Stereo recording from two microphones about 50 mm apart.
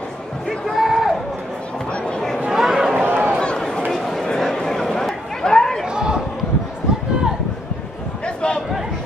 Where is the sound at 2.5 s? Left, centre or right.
Centre.